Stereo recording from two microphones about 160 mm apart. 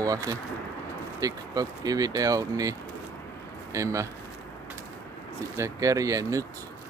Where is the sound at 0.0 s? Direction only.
20° right (ahead or behind).